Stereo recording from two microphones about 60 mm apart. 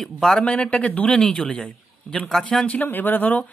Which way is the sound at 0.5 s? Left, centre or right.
Left.